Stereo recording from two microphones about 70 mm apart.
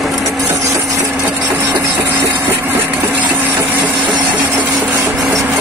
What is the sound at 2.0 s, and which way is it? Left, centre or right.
Engine, right.